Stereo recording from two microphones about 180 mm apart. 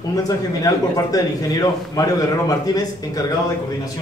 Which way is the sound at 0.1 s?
20° left (ahead or behind).